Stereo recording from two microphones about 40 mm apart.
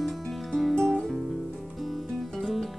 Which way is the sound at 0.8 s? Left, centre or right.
Centre.